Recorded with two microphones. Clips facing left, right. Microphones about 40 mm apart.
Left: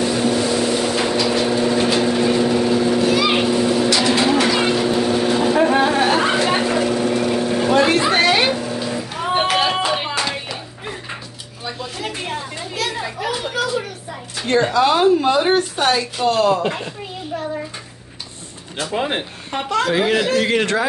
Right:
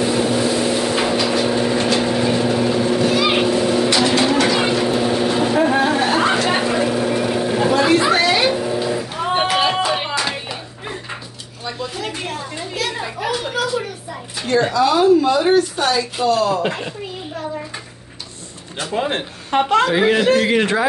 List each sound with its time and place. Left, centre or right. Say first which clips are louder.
0.0 s vehicle: right 1 dB; centre
4.1 s vehicle: even; centre
5.6 s a sound: left 1 dB; centre
6.5 s vehicle: even; centre
7.7 s a sound: even; left
8.5 s vehicle: right 3 dB; centre
9.8 s music: even; centre
10.2 s a sound: even; centre
11.6 s chatter: right 1 dB; centre
14.7 s a sound: right 2 dB; left
16.3 s speech: left 1 dB; left
18.9 s speech: right 1 dB; centre
19.5 s speech: right 5 dB; right
19.9 s speech: right 3 dB; centre